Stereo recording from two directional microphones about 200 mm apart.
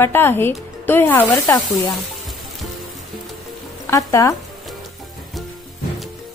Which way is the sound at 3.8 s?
15° left (ahead or behind).